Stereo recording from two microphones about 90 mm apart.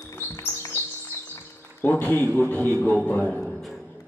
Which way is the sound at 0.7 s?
25° left (ahead or behind).